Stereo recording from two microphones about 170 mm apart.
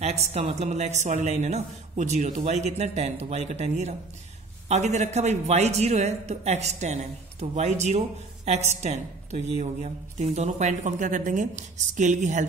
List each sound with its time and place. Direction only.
0.0 s a woman's voice: 40° right (ahead or behind)